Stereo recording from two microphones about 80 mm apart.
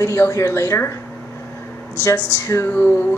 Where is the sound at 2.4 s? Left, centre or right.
Left.